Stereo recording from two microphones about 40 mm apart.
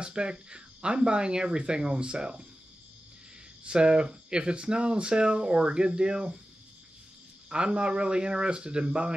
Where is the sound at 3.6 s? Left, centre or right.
Right.